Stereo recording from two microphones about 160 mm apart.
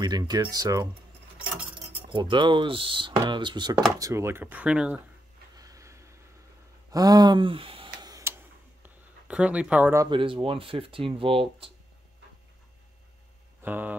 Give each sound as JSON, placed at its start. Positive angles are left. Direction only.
{"t": 0.0, "sound": "speech", "side_deg": -25}
{"t": 4.0, "sound": "speech", "side_deg": -15}
{"t": 5.6, "sound": "a sound", "side_deg": -20}
{"t": 8.8, "sound": "a sound", "side_deg": -10}
{"t": 10.0, "sound": "speech", "side_deg": -30}
{"t": 13.6, "sound": "mantra", "side_deg": -10}